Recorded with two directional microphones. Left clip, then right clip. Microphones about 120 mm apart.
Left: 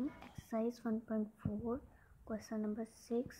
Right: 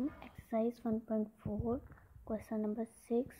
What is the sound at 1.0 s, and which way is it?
Speech, 20° right (ahead or behind).